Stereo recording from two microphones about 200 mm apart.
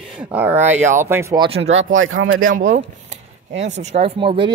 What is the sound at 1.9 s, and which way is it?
Speech, 85° right.